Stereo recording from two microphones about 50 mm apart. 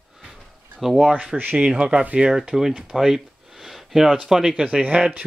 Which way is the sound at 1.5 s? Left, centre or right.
Right.